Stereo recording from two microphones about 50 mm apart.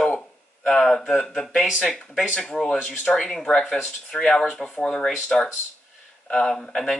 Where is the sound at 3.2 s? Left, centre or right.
Centre.